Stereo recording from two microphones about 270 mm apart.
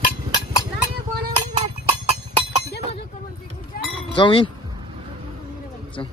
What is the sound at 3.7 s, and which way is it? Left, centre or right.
Cowbell, left.